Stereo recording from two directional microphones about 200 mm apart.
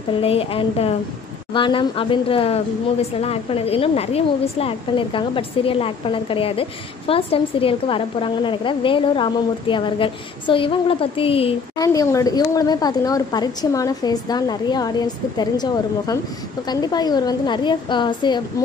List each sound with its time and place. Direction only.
0.2 s a woman's voice: 30° left (ahead or behind)
11.8 s a woman's voice: 15° left (ahead or behind)